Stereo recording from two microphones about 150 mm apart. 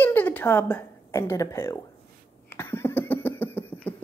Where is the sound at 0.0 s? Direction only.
10° left (ahead or behind).